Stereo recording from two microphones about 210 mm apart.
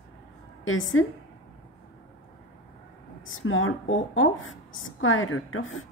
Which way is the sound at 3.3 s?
70° left (ahead or behind).